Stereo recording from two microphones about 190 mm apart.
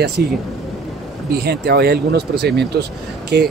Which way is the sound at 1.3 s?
55° right (ahead or behind).